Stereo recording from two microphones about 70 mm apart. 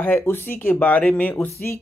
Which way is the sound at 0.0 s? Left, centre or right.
Left.